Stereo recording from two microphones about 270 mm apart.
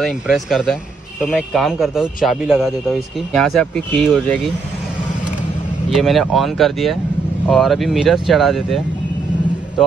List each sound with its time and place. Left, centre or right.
0.3 s speech: centre
5.9 s speech: centre